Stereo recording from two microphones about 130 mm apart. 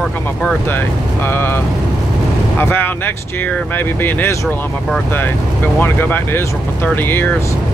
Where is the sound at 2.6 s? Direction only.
15° left (ahead or behind).